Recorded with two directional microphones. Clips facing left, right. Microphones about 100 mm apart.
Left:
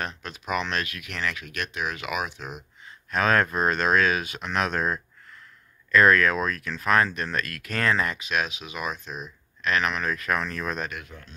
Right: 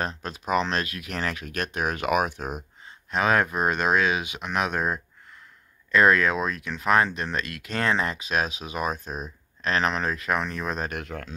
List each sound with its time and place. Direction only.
0.0 s speech: 30° right (ahead or behind); by 2.6 s 45° right (ahead or behind)
2.8 s speech: 20° right (ahead or behind)
10.9 s speech: 70° right (ahead or behind)